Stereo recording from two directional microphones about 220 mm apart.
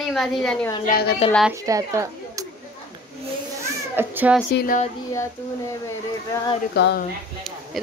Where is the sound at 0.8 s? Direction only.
45° left (ahead or behind).